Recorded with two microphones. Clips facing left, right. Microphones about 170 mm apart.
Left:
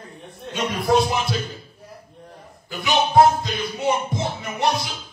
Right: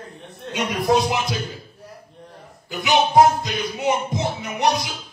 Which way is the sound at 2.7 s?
20° right (ahead or behind).